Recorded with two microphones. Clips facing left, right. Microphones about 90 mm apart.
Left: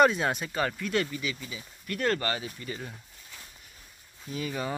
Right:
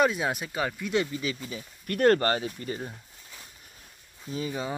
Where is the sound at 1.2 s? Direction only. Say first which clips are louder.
Right 3 dB; 35° right (ahead or behind).